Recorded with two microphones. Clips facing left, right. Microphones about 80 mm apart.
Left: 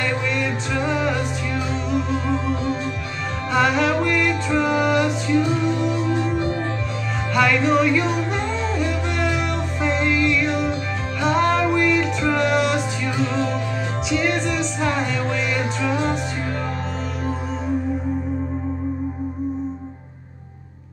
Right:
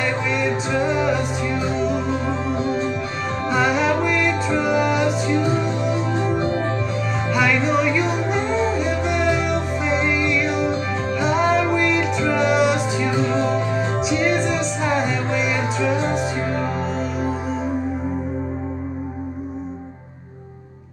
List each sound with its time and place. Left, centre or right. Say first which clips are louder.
0.4 s music: right 3 dB; right
3.5 s music: left 1 dB; centre
5.4 s music: even; right
7.3 s speech: left 2 dB; centre
8.1 s music: right 2 dB; right
13.2 s music: even; right